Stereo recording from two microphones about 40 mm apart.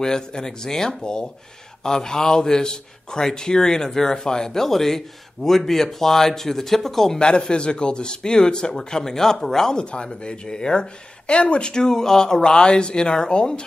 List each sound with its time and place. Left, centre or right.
0.0 s a man's voice: centre
7.2 s speech: left
9.8 s speech: left